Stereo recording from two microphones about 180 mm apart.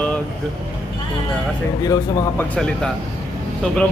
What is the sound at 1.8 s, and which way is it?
Speech, 20° left (ahead or behind).